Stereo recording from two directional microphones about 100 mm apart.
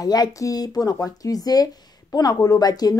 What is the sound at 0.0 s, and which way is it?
Speech, 40° left (ahead or behind).